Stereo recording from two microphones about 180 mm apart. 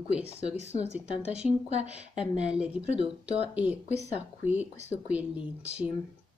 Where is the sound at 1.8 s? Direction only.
5° right (ahead or behind).